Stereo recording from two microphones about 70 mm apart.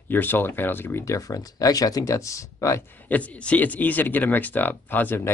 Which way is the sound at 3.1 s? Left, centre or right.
Centre.